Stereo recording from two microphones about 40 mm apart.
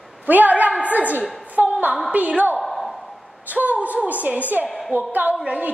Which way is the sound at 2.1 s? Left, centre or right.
Right.